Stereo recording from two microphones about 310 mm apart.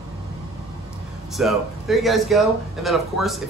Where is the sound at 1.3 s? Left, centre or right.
Centre.